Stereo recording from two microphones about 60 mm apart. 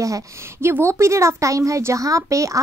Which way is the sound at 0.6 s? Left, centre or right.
Right.